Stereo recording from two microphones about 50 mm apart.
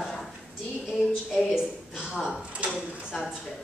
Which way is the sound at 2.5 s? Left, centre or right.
Right.